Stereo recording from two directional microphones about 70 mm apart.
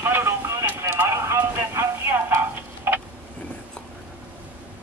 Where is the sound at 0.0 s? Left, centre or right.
Right.